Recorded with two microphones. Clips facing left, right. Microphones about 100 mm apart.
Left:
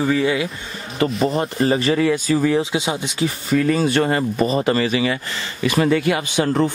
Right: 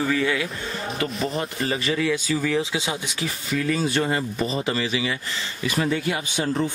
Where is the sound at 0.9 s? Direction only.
40° left (ahead or behind).